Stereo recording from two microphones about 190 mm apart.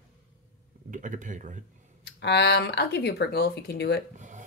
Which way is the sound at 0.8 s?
40° right (ahead or behind).